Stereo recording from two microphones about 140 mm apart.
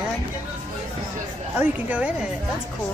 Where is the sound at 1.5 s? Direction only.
10° right (ahead or behind).